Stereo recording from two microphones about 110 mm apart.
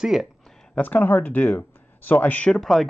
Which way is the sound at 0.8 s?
15° left (ahead or behind).